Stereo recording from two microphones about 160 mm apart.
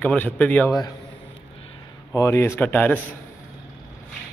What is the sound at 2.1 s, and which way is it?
Speech, 15° left (ahead or behind).